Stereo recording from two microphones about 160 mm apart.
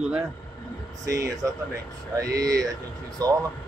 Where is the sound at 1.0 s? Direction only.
20° right (ahead or behind).